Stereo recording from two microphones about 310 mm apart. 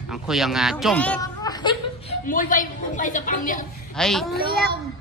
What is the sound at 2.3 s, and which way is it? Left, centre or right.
A woman's voice, left.